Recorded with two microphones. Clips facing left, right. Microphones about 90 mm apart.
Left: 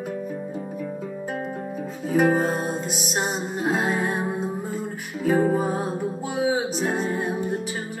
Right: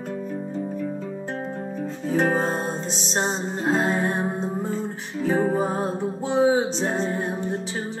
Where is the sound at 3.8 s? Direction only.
35° right (ahead or behind).